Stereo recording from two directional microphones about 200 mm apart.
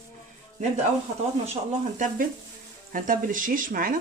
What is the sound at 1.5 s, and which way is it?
Speech, 40° right (ahead or behind).